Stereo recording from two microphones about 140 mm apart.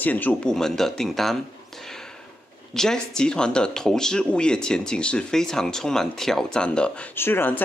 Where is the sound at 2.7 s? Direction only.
5° left (ahead or behind).